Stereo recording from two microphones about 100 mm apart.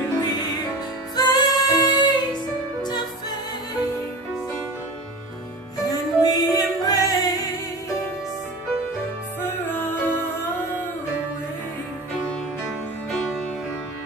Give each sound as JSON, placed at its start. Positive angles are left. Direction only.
{"t": 1.1, "sound": "music", "side_deg": 45}
{"t": 5.9, "sound": "music", "side_deg": 40}
{"t": 9.4, "sound": "music", "side_deg": 20}